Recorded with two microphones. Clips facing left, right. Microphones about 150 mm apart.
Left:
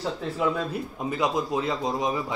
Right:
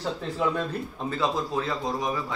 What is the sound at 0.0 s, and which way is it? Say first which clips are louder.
Speech: left 1 dB; 5° left (ahead or behind).